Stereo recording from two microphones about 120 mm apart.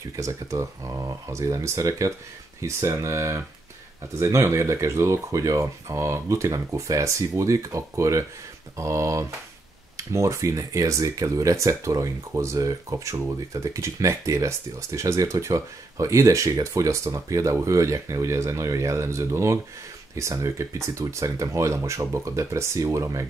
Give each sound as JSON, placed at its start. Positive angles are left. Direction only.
{"t": 0.1, "sound": "speech", "side_deg": -25}